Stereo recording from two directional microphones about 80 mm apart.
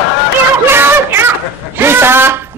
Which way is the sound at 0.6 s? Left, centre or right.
Right.